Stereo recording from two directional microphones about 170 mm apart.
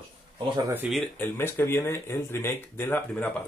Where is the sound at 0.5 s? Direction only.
15° right (ahead or behind).